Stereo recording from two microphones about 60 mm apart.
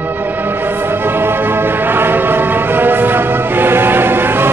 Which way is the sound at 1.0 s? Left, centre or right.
Right.